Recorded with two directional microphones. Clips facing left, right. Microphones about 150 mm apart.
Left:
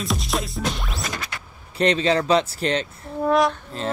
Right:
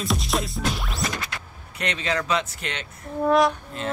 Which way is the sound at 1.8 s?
30° left (ahead or behind).